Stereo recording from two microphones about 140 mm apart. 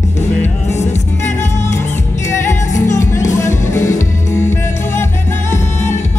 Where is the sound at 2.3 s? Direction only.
20° left (ahead or behind).